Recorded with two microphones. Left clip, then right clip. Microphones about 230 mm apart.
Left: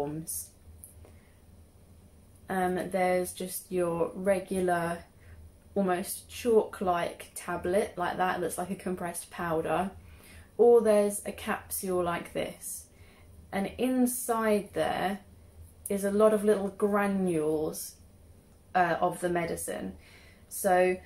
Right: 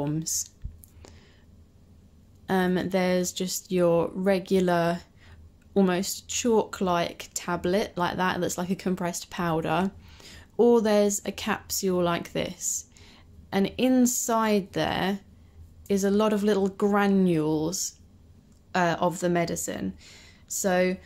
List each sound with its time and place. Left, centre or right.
2.4 s speech: right